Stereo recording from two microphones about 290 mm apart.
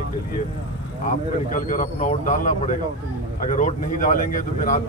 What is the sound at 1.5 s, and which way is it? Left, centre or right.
Speech, left.